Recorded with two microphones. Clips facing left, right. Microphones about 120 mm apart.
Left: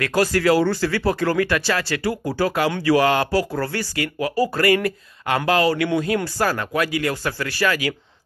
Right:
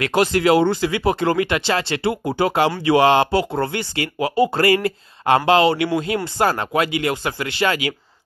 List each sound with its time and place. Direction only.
0.0 s speech: 20° right (ahead or behind)